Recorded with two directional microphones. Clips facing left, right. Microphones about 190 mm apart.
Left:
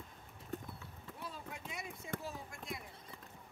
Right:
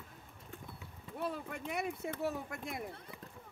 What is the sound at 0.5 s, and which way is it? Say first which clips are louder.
Clip-clop: left 7 dB; 40° left (ahead or behind).